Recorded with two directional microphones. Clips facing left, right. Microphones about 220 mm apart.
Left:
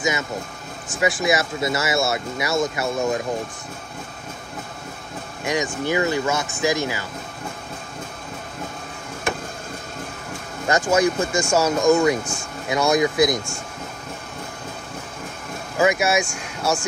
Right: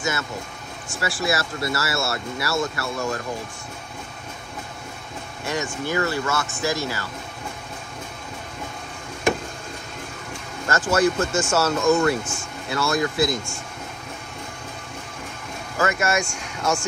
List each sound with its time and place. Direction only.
0.9 s speech: 20° left (ahead or behind)
5.4 s speech: 15° left (ahead or behind)
10.7 s speech: 15° left (ahead or behind)
15.8 s speech: 10° left (ahead or behind)